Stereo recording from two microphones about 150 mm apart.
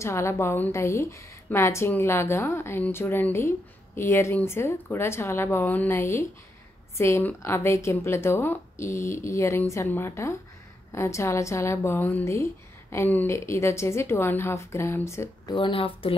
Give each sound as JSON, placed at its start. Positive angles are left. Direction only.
{"t": 0.0, "sound": "a woman's voice", "side_deg": 20}
{"t": 15.5, "sound": "speech", "side_deg": 35}